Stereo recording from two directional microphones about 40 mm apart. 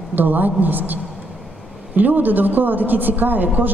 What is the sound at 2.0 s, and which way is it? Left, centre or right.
A woman's voice, right.